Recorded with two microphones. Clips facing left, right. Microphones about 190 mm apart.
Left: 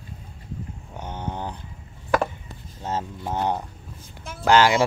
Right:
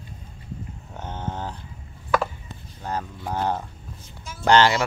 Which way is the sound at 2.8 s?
25° left (ahead or behind).